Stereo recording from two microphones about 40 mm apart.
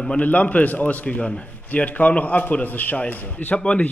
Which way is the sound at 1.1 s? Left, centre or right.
Left.